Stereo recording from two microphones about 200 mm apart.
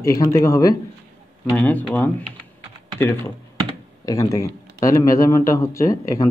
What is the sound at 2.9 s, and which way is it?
Speech, 10° left (ahead or behind).